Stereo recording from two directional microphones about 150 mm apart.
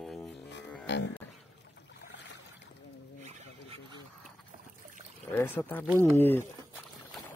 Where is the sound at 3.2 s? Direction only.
50° right (ahead or behind).